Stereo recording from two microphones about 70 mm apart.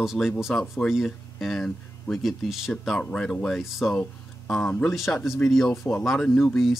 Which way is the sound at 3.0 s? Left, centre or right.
Centre.